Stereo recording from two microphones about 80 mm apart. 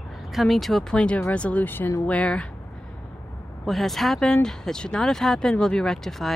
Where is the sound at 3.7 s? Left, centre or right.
Centre.